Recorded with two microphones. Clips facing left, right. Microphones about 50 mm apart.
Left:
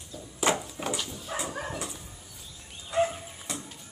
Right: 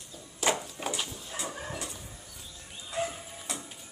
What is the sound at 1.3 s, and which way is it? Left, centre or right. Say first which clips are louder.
Dog: left 6 dB; left.